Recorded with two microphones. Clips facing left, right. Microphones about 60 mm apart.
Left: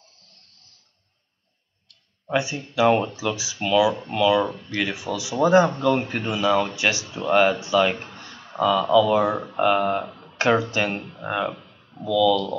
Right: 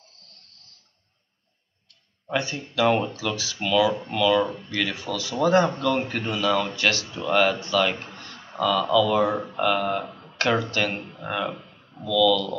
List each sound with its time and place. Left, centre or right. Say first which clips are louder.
2.2 s speech: left 3 dB; centre
8.0 s a sound: left 1 dB; centre
8.9 s speech: left 2 dB; centre
11.1 s speech: left 2 dB; centre
11.4 s a sound: left 2 dB; centre
12.0 s speech: left 1 dB; centre